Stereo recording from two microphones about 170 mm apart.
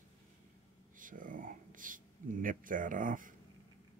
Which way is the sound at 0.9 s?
50° right (ahead or behind).